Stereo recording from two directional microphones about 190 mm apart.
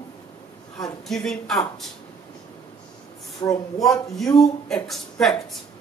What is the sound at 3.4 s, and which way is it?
Speech, 15° left (ahead or behind).